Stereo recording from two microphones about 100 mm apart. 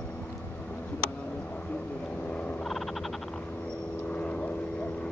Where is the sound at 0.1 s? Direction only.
15° left (ahead or behind).